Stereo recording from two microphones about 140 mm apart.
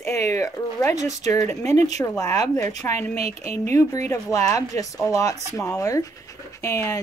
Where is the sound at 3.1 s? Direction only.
50° right (ahead or behind).